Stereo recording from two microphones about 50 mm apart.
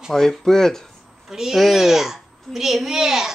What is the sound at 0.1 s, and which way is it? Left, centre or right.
Speech, centre.